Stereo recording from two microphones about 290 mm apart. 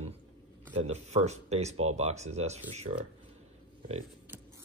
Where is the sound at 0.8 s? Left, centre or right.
Right.